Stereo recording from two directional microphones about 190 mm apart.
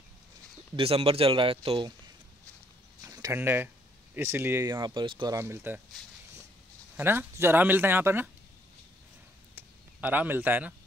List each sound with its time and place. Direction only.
0.7 s speech: 30° right (ahead or behind)
3.0 s speech: 15° right (ahead or behind)
7.0 s speech: 10° right (ahead or behind)
9.6 s a sound: 10° right (ahead or behind)